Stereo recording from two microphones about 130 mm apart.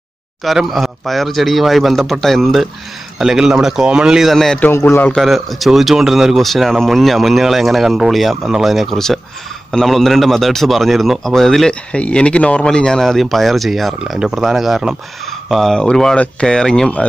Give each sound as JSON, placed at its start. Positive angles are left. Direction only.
{"t": 0.4, "sound": "a man's voice", "side_deg": 0}
{"t": 4.6, "sound": "a man's voice", "side_deg": 20}
{"t": 5.1, "sound": "a man's voice", "side_deg": 0}